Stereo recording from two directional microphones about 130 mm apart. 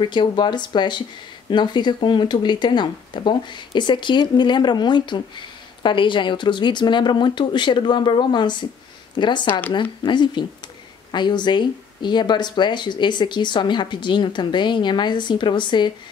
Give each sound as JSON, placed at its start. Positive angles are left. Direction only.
{"t": 0.0, "sound": "speech", "side_deg": 35}